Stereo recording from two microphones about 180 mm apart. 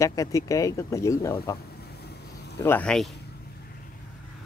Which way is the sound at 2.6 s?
5° left (ahead or behind).